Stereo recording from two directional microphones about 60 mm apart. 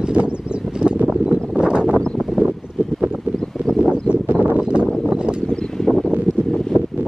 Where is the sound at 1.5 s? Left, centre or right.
Centre.